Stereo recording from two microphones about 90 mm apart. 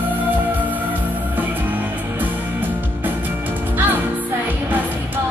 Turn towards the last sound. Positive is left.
turn(degrees=-20)  # may be behind; listen again after turning